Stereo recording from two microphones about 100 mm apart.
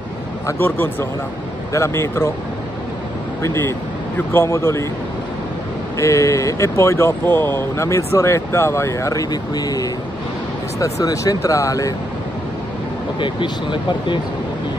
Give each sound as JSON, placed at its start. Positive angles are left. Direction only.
{"t": 0.6, "sound": "speech", "side_deg": 20}
{"t": 3.4, "sound": "speech", "side_deg": 25}
{"t": 5.9, "sound": "speech", "side_deg": 30}
{"t": 13.2, "sound": "speech", "side_deg": 55}